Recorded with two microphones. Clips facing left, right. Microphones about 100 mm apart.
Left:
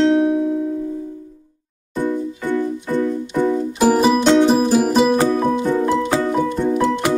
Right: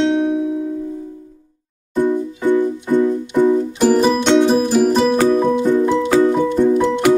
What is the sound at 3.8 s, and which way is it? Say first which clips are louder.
Music: left 2 dB; 5° left (ahead or behind).